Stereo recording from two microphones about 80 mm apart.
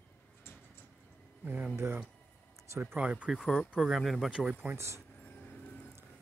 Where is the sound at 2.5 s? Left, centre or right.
Right.